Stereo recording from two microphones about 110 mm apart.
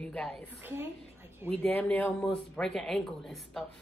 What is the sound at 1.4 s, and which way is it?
Speech, 15° left (ahead or behind).